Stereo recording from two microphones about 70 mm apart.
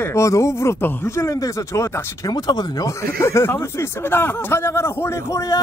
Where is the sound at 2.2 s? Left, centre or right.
Left.